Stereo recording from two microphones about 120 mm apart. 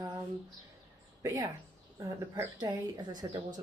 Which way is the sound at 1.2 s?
30° right (ahead or behind).